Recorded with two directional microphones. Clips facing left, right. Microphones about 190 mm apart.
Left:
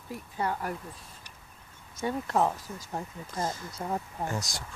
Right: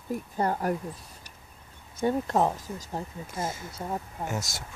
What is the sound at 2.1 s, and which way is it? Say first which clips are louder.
Speech: right 1 dB; 25° right (ahead or behind).